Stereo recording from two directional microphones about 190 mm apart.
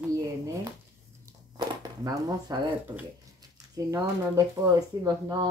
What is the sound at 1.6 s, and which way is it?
Speech, 20° right (ahead or behind).